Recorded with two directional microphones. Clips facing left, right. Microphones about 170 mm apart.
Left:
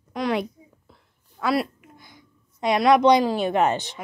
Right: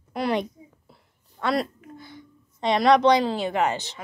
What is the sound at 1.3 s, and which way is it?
Speech, 5° left (ahead or behind).